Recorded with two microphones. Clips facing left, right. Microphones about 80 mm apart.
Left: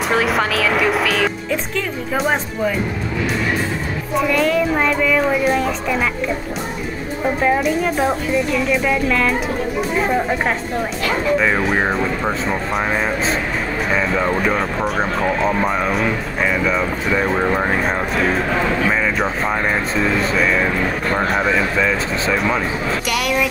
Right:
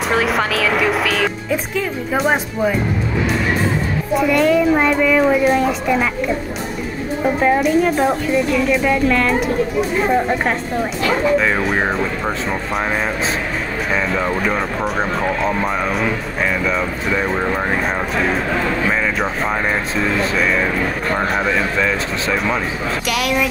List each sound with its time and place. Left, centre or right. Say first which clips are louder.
0.1 s speech: even; centre
4.3 s speech: right 4 dB; centre
7.3 s speech: right 3 dB; centre
14.1 s speech: left 1 dB; centre
20.0 s speech: even; centre